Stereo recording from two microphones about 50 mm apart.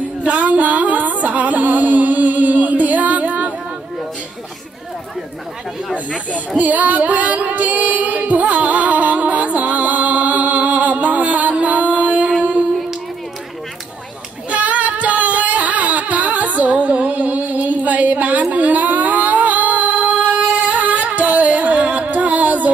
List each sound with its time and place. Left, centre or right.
0.3 s music: right
6.6 s female singing: right
14.5 s singing: right
18.5 s music: right